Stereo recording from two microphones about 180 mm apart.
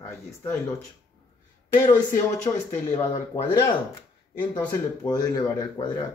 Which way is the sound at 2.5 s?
20° left (ahead or behind).